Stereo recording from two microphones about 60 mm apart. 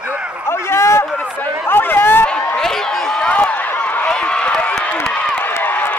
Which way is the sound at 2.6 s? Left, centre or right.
Centre.